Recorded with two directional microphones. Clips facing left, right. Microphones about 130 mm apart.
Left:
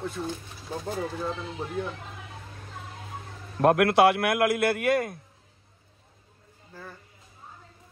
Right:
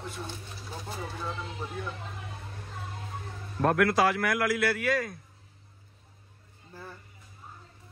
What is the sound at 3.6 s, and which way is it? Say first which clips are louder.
A man's voice: left 5 dB; 60° left (ahead or behind).